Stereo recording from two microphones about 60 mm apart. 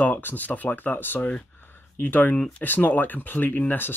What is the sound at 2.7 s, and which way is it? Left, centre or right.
Speech, left.